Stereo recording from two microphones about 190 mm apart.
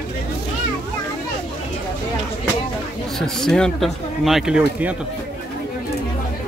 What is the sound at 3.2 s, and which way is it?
Speech, centre (ahead or behind).